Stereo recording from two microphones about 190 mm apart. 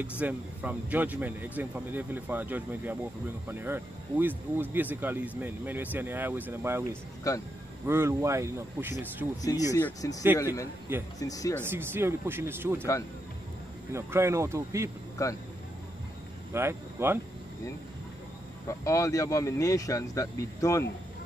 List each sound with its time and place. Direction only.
0.0 s speech: 5° right (ahead or behind)
7.3 s speech: 20° left (ahead or behind)
7.8 s speech: 15° right (ahead or behind)
9.7 s speech: 15° left (ahead or behind)
11.6 s speech: 10° right (ahead or behind)
13.9 s speech: 15° right (ahead or behind)
15.2 s speech: 15° left (ahead or behind)
16.5 s speech: 10° right (ahead or behind)
18.7 s speech: 15° left (ahead or behind)